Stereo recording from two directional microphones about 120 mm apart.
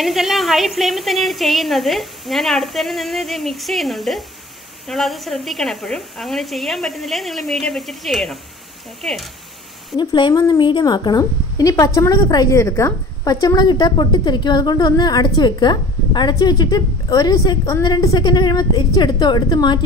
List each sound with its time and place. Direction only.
0.0 s a woman's voice: centre (ahead or behind)
9.9 s a woman's voice: 40° left (ahead or behind)
10.3 s a woman's voice: 30° left (ahead or behind)
10.6 s a woman's voice: 40° left (ahead or behind)